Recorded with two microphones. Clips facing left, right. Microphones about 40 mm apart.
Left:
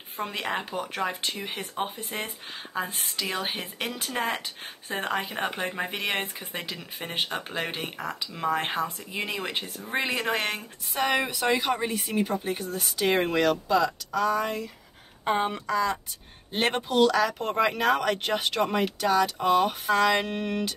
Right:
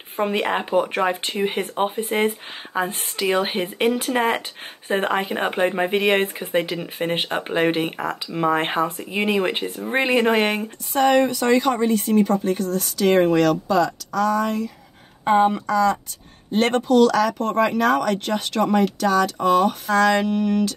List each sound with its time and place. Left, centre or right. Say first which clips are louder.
0.2 s speech: right 9 dB; right
2.7 s speech: right 7 dB; right
10.9 s speech: right 9 dB; centre
20.2 s speech: right 9 dB; left